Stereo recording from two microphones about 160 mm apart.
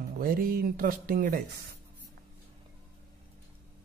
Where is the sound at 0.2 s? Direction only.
65° right (ahead or behind).